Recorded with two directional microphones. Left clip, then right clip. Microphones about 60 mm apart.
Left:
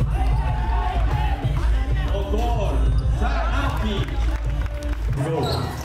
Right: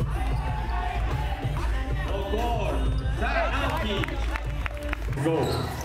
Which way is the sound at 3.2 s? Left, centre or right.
Right.